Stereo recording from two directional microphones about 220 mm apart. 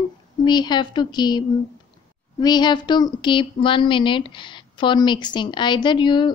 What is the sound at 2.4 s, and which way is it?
Speech, 20° left (ahead or behind).